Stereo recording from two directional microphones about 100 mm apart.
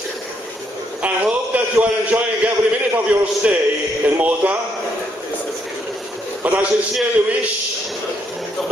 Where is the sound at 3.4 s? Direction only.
15° right (ahead or behind).